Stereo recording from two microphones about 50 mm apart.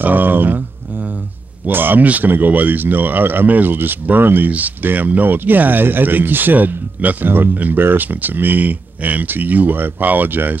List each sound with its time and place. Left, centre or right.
0.0 s speech: right
1.7 s speech: right